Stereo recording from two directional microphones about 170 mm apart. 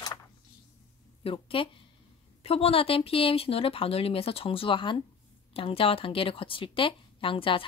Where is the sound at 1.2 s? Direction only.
30° left (ahead or behind).